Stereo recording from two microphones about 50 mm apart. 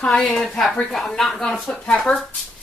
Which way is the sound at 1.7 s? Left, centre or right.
Left.